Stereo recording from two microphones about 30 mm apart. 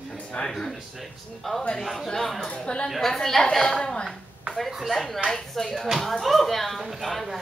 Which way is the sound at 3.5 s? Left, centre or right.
Left.